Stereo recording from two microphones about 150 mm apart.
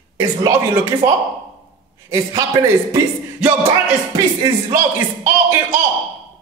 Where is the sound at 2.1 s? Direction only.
20° right (ahead or behind).